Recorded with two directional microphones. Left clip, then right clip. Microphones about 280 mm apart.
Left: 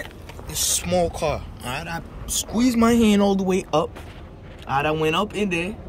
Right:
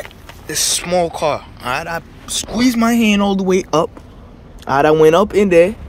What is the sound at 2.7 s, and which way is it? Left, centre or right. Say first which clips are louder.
Speech: right 3 dB; right.